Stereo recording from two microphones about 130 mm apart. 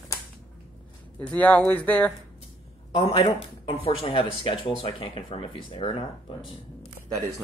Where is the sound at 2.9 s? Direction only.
45° left (ahead or behind).